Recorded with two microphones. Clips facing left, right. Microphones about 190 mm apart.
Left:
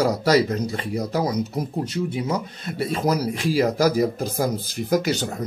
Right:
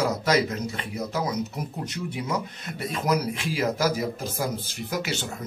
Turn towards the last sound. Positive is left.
turn(degrees=40)  # may be behind; listen again after turning